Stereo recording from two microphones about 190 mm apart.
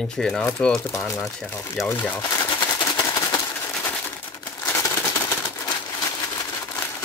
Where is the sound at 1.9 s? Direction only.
10° left (ahead or behind).